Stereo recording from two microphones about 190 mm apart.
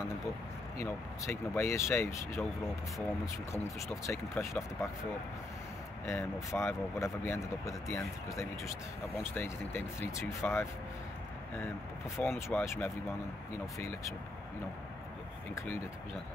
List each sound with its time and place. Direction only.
0.7 s speech: 15° left (ahead or behind)
3.6 s speech: 15° left (ahead or behind)
6.0 s speech: 15° left (ahead or behind)
12.2 s speech: 15° left (ahead or behind)